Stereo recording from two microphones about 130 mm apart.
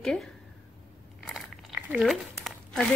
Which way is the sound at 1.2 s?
Centre (ahead or behind).